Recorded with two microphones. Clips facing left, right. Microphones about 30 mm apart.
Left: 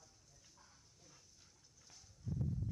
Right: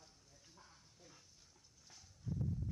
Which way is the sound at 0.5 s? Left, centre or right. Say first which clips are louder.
Right 3 dB; right.